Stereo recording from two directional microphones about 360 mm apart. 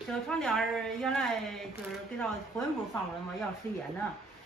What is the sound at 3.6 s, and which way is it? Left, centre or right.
Speech, centre.